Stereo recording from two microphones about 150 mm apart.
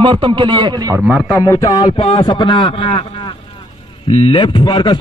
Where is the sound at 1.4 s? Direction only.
25° left (ahead or behind).